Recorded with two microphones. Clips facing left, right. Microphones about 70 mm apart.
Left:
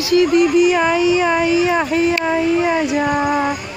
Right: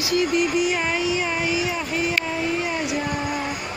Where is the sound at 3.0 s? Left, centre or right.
Left.